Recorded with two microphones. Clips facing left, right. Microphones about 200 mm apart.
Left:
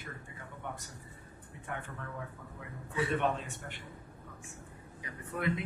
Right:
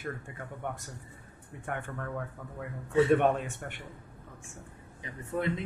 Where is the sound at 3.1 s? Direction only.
50° right (ahead or behind).